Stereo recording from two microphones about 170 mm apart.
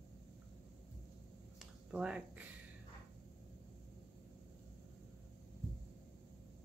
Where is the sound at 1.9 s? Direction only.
5° right (ahead or behind).